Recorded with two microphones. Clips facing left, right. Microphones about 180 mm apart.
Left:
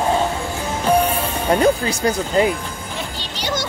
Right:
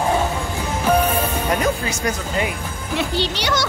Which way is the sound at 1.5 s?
30° left (ahead or behind).